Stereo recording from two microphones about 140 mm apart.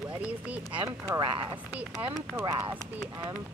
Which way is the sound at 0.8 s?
20° right (ahead or behind).